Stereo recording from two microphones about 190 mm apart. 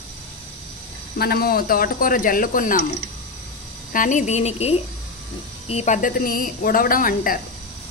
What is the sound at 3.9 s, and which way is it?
A woman's voice, 45° left (ahead or behind).